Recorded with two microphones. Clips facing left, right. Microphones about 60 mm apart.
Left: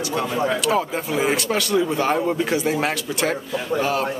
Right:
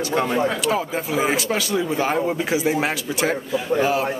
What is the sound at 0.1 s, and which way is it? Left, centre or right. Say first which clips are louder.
Speech: right 4 dB; right.